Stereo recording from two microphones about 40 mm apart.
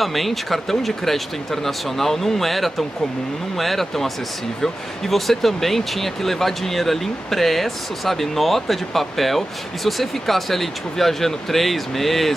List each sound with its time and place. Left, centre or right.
0.0 s speech: centre